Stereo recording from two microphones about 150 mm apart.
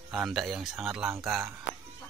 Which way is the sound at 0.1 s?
Centre (ahead or behind).